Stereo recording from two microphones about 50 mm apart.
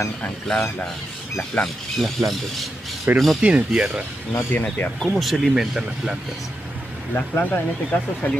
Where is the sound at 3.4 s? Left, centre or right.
Right.